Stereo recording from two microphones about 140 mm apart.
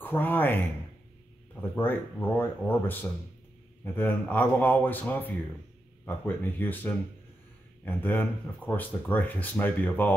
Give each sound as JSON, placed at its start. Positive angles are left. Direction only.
{"t": 0.0, "sound": "speech", "side_deg": 15}